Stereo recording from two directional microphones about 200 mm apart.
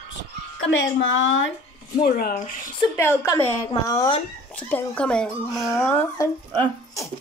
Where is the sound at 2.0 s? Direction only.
50° left (ahead or behind).